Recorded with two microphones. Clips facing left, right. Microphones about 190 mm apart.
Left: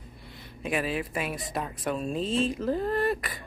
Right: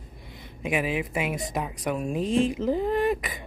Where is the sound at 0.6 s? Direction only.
15° right (ahead or behind).